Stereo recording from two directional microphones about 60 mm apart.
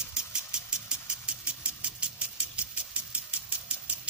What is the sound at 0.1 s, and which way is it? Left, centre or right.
Engine, centre.